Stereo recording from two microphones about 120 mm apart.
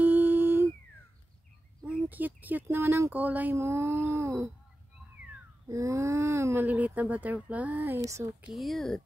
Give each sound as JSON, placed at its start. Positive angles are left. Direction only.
{"t": 0.0, "sound": "humming", "side_deg": -15}
{"t": 1.9, "sound": "speech", "side_deg": -15}
{"t": 5.7, "sound": "speech", "side_deg": -25}
{"t": 8.0, "sound": "speech", "side_deg": -25}
{"t": 8.5, "sound": "speech", "side_deg": 0}